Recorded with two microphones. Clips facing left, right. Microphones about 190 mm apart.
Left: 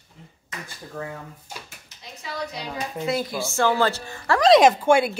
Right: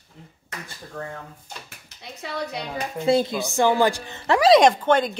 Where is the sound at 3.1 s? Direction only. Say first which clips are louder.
Right 7 dB; 25° right (ahead or behind).